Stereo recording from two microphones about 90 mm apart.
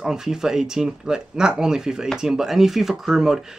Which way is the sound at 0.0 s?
5° right (ahead or behind).